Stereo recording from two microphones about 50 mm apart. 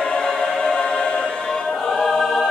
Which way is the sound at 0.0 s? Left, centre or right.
Centre.